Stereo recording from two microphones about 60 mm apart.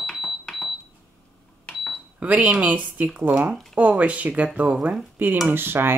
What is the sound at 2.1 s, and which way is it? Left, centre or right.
Speech, right.